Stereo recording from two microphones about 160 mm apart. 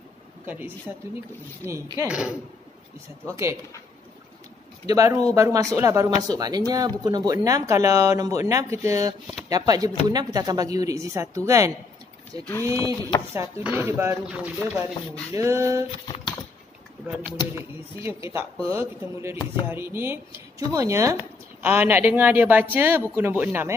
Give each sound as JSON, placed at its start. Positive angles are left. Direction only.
{"t": 0.5, "sound": "a woman's voice", "side_deg": -15}
{"t": 3.3, "sound": "a woman's voice", "side_deg": -15}
{"t": 4.8, "sound": "speech", "side_deg": -20}
{"t": 12.7, "sound": "speech", "side_deg": 30}
{"t": 13.3, "sound": "a woman's voice", "side_deg": -15}
{"t": 18.0, "sound": "a woman's voice", "side_deg": -15}